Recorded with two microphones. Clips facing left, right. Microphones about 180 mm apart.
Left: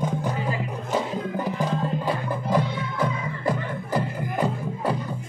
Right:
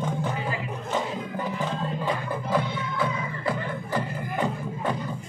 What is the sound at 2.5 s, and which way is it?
Music, 40° left (ahead or behind).